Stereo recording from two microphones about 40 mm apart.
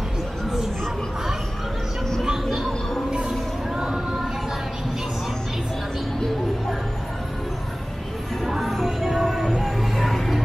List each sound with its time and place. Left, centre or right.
2.2 s music: centre
3.1 s a sound: right
8.5 s music: centre